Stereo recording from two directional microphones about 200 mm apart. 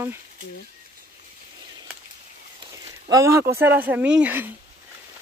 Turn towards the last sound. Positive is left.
turn(degrees=-10)  # may be behind; listen again after turning